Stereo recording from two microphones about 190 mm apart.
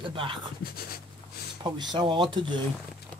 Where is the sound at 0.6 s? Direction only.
50° left (ahead or behind).